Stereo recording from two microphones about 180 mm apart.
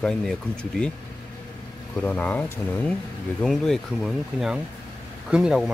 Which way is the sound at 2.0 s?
10° left (ahead or behind).